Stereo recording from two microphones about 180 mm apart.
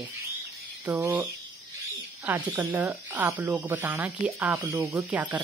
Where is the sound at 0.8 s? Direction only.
10° right (ahead or behind).